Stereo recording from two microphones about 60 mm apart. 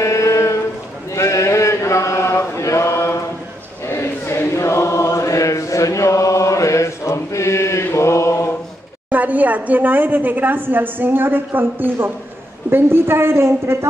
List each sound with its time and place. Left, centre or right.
0.0 s a sound: left
1.1 s chant: left
7.9 s mantra: left
9.1 s a woman's voice: right